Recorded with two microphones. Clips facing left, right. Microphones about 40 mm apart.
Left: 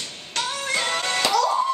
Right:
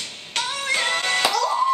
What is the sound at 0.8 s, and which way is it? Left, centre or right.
Music, centre.